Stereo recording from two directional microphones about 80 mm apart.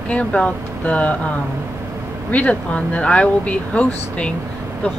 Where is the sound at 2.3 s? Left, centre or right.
Centre.